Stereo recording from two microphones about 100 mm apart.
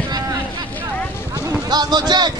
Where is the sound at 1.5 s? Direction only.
45° right (ahead or behind).